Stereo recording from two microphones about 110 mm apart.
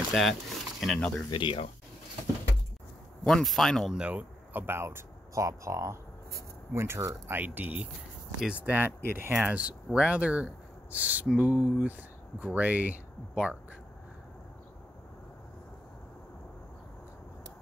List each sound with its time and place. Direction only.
0.1 s speech: centre (ahead or behind)
1.3 s speech: 50° left (ahead or behind)
3.3 s speech: 5° left (ahead or behind)
4.0 s speech: 15° right (ahead or behind)